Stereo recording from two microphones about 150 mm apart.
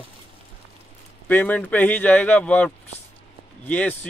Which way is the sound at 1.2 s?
10° left (ahead or behind).